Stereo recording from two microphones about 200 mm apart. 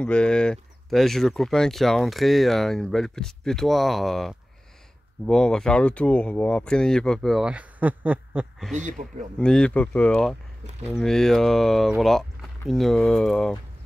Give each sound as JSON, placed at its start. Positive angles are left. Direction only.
{"t": 0.0, "sound": "speech", "side_deg": 5}
{"t": 8.7, "sound": "speech", "side_deg": -40}
{"t": 9.4, "sound": "speech", "side_deg": 5}